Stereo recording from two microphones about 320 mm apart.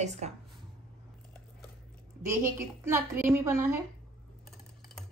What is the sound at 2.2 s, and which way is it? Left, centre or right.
A woman's voice, centre.